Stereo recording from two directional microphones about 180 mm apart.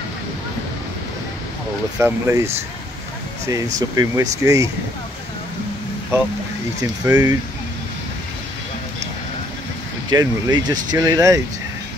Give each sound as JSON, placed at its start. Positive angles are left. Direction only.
{"t": 2.0, "sound": "speech", "side_deg": -15}
{"t": 3.9, "sound": "speech", "side_deg": -20}
{"t": 6.8, "sound": "speech", "side_deg": -20}
{"t": 10.0, "sound": "speech", "side_deg": -25}